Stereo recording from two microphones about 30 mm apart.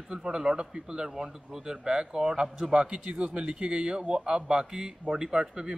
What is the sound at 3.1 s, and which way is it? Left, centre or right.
A man's voice, right.